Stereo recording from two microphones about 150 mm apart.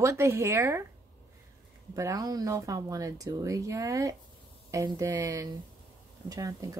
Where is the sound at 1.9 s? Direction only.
20° right (ahead or behind).